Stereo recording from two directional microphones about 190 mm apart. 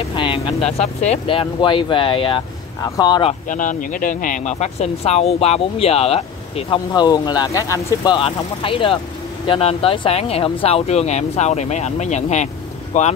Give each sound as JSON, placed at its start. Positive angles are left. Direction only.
{"t": 0.1, "sound": "speech", "side_deg": 25}
{"t": 3.4, "sound": "speech", "side_deg": 45}
{"t": 6.9, "sound": "speech", "side_deg": 20}